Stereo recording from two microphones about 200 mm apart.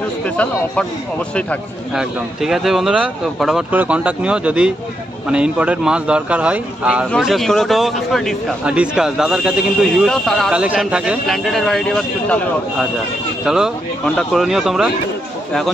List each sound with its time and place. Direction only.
1.3 s a man's voice: centre (ahead or behind)